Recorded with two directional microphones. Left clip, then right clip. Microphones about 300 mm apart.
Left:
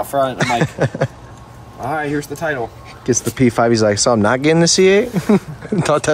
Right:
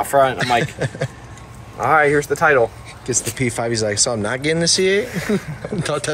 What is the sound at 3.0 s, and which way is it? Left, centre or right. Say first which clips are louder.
Speech: left 6 dB; left.